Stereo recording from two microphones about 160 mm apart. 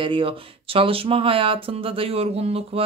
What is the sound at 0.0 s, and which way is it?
Speech, 35° right (ahead or behind).